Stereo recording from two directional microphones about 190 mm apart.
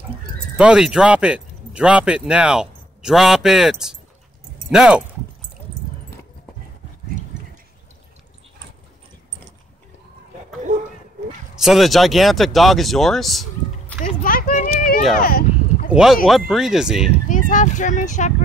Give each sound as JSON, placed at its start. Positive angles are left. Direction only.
{"t": 0.6, "sound": "speech", "side_deg": -5}
{"t": 11.6, "sound": "speech", "side_deg": 0}
{"t": 14.0, "sound": "a sound", "side_deg": 45}
{"t": 15.9, "sound": "speech", "side_deg": 0}
{"t": 17.3, "sound": "speech", "side_deg": 40}